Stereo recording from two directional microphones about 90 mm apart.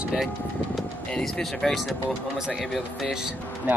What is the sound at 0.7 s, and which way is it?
Speech, 5° left (ahead or behind).